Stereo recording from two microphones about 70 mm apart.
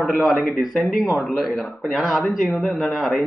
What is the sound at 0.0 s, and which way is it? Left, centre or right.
Speech, centre.